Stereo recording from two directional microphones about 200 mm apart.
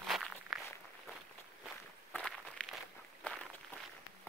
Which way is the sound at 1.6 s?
Centre (ahead or behind).